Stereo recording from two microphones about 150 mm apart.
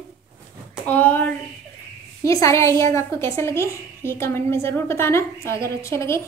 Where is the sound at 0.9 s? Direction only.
10° left (ahead or behind).